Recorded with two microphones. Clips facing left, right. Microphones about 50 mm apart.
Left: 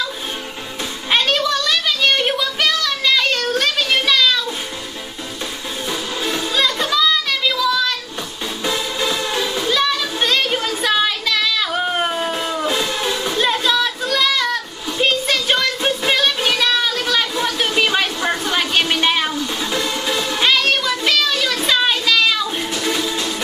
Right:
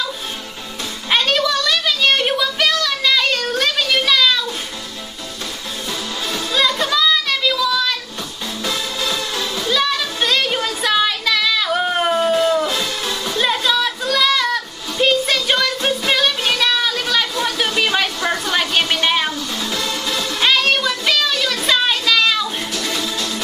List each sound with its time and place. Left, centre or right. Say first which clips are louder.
1.1 s a sound: even; centre
6.5 s music: right 2 dB; centre
8.6 s music: left 2 dB; centre
9.8 s a sound: right 1 dB; centre
12.6 s music: left 2 dB; centre
13.4 s a sound: even; centre
19.3 s music: left 2 dB; centre
20.4 s child singing: right 1 dB; centre
22.8 s music: left 4 dB; centre